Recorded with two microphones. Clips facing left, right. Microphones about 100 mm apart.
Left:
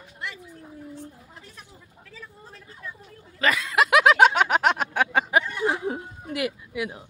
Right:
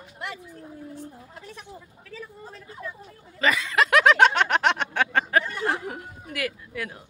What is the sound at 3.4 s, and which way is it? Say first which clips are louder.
Snicker: even; centre (ahead or behind).